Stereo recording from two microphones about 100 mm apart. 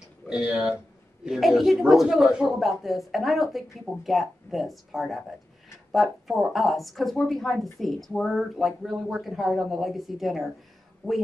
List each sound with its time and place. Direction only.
0.3 s speech: 5° right (ahead or behind)